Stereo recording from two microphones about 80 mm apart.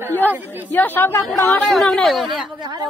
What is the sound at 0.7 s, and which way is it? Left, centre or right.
Speech, left.